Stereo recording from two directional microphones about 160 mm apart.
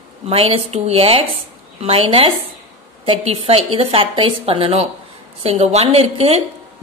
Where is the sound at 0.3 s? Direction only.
35° right (ahead or behind).